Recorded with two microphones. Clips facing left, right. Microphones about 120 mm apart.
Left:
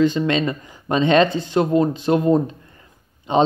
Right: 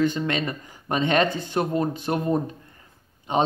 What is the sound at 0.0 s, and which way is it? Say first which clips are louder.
Speech: left 6 dB; 20° left (ahead or behind).